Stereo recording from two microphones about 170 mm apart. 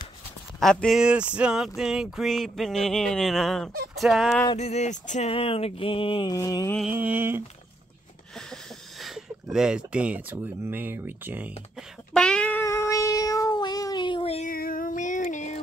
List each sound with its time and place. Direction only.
0.6 s a sound: centre (ahead or behind)
4.6 s a sound: 40° left (ahead or behind)
6.3 s music: 20° left (ahead or behind)
6.8 s speech: 10° right (ahead or behind)
9.0 s speech: 5° right (ahead or behind)
12.1 s cat: 5° left (ahead or behind); by 14.5 s 35° left (ahead or behind)
14.5 s music: 55° left (ahead or behind)